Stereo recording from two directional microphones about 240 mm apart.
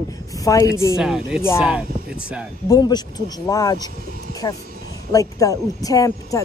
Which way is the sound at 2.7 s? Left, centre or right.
Centre.